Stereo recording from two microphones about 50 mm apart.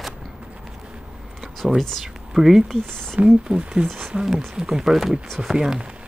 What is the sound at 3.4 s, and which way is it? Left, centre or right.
Speech, centre.